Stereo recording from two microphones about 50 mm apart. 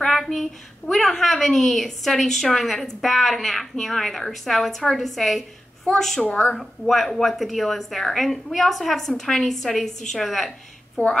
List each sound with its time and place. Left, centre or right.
0.0 s a woman's voice: centre
6.2 s a woman's voice: left
6.5 s a woman's voice: centre
11.0 s a woman's voice: left